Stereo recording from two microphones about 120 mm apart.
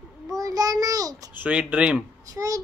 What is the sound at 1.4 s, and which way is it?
Speech, 10° right (ahead or behind).